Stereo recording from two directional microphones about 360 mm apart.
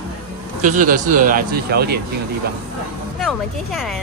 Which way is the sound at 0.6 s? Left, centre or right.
Right.